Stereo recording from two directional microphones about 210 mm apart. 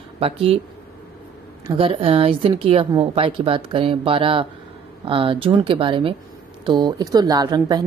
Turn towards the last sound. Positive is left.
turn(degrees=-20)  # may be behind; listen again after turning